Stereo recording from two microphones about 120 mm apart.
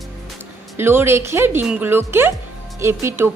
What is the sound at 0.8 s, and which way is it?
Speech, 20° right (ahead or behind).